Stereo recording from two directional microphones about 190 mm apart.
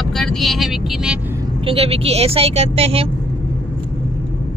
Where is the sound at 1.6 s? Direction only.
30° right (ahead or behind).